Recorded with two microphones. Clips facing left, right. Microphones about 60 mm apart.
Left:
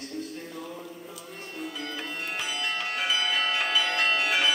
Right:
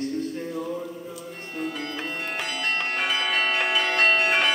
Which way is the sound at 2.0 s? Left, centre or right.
Right.